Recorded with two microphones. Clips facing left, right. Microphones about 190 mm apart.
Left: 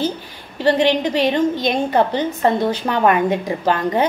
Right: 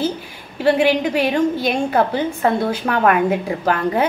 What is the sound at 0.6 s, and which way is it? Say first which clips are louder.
A woman's voice: even; 10° right (ahead or behind).